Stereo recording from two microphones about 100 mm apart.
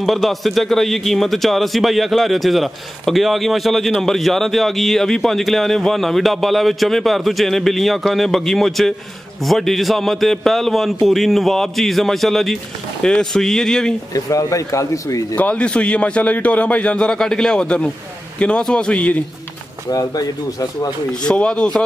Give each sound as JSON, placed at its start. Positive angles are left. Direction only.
{"t": 0.0, "sound": "a man's voice", "side_deg": 0}
{"t": 14.1, "sound": "speech", "side_deg": 35}
{"t": 15.3, "sound": "a man's voice", "side_deg": 10}
{"t": 19.9, "sound": "speech", "side_deg": 40}
{"t": 21.1, "sound": "a man's voice", "side_deg": 10}